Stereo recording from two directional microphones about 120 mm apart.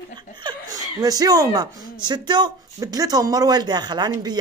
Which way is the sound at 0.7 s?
30° right (ahead or behind).